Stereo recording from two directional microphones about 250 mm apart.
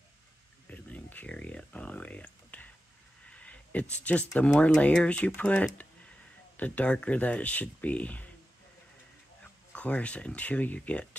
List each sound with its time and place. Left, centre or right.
0.7 s a sound: centre
3.9 s speech: centre
9.4 s speech: centre